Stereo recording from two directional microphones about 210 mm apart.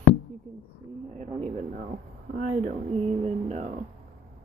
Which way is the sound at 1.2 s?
30° right (ahead or behind).